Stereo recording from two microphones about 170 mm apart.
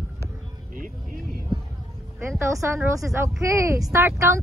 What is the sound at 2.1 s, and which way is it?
Speech, 15° right (ahead or behind).